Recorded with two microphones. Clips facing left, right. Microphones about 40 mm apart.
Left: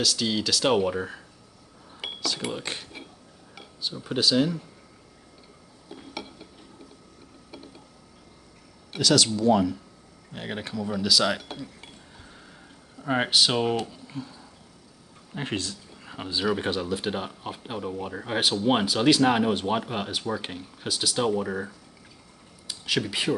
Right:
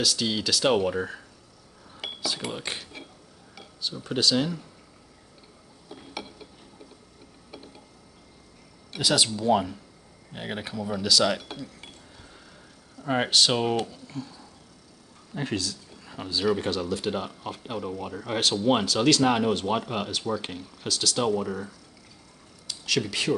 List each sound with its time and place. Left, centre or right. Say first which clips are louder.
0.0 s speech: left 1 dB; centre
2.4 s speech: left 1 dB; centre
3.8 s speech: even; centre
6.1 s a sound: even; centre
7.5 s tick-tock: left 1 dB; centre
9.0 s speech: left 3 dB; centre
10.3 s speech: left 1 dB; centre
13.0 s speech: even; centre
14.0 s a sound: even; centre
15.3 s speech: right 1 dB; left
16.1 s speech: right 1 dB; left
22.7 s speech: even; centre